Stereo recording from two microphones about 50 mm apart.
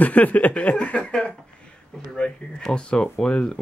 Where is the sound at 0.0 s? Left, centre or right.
Left.